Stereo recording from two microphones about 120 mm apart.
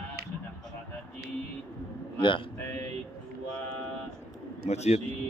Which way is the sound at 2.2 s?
45° left (ahead or behind).